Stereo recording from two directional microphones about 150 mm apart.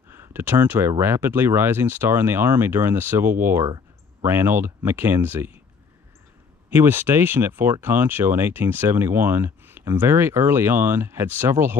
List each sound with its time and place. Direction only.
0.1 s speech: 15° right (ahead or behind)
6.7 s speech: 15° right (ahead or behind)